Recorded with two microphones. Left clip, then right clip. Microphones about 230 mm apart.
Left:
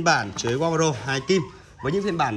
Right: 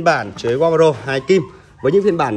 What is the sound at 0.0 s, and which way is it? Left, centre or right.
Speech, centre.